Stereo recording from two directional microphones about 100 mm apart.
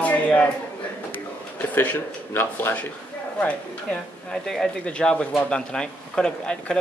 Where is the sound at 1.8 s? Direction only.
20° left (ahead or behind).